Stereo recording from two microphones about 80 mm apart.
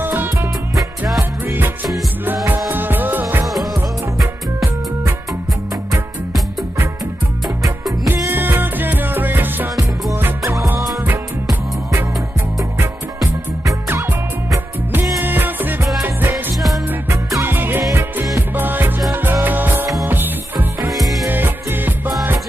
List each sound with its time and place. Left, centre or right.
0.0 s music: right
2.7 s music: right
8.3 s music: right
15.2 s music: right
16.5 s music: centre
17.4 s music: right
20.9 s music: centre
21.3 s music: right